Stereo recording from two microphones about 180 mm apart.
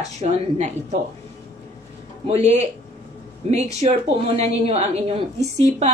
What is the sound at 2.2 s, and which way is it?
Speech, 35° right (ahead or behind).